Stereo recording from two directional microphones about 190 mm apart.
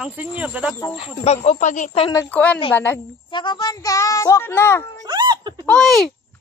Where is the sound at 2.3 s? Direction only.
10° left (ahead or behind).